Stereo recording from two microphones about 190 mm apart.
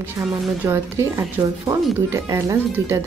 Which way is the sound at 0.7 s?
15° right (ahead or behind).